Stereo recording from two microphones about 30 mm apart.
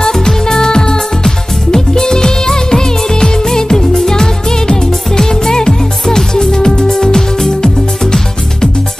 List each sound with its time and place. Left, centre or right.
0.0 s music: centre